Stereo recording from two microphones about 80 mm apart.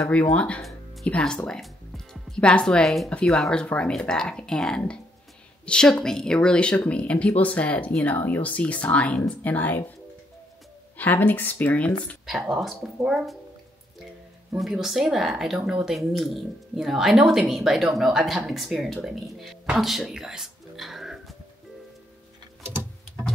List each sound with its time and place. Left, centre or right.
0.1 s speech: centre
0.6 s music: centre
1.0 s a woman's voice: centre
11.0 s speech: left
12.3 s a woman's voice: centre
14.6 s a woman's voice: centre
19.0 s music: centre